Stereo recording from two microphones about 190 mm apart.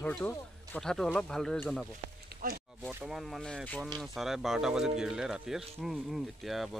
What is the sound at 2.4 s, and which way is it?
Speech, 50° right (ahead or behind).